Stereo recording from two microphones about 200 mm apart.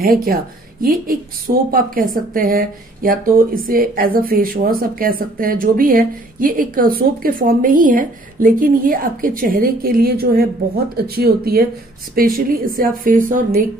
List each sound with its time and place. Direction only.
0.0 s speech: 45° right (ahead or behind)